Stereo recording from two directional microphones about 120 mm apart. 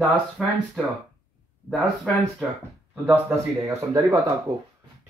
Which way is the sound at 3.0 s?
15° right (ahead or behind).